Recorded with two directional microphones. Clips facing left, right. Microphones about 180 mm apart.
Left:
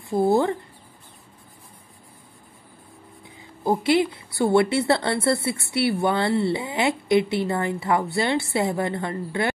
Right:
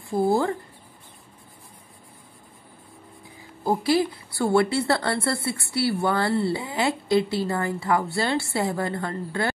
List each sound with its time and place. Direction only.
0.3 s a woman's voice: 20° left (ahead or behind)
3.3 s a woman's voice: 20° left (ahead or behind)